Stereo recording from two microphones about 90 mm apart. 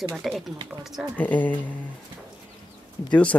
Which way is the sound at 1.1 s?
15° left (ahead or behind).